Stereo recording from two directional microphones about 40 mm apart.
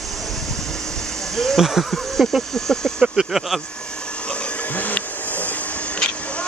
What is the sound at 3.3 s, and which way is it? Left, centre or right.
Speech, centre.